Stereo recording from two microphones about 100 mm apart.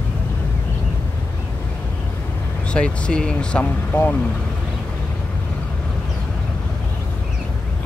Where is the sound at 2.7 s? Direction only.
10° left (ahead or behind).